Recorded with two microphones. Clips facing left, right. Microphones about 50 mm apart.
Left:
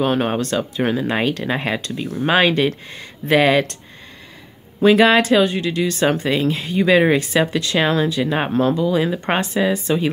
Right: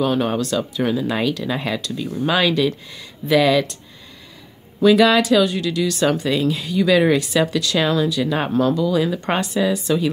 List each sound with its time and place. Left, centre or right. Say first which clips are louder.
0.0 s speech: left 1 dB; left
4.8 s speech: left 1 dB; left